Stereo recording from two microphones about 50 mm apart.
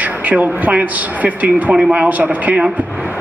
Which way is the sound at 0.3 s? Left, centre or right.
Right.